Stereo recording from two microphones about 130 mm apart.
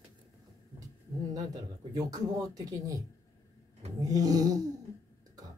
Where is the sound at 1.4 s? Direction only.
30° right (ahead or behind).